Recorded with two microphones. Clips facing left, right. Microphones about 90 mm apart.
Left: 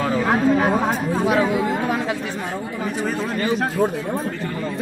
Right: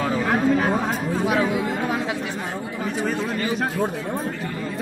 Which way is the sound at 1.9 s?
10° right (ahead or behind).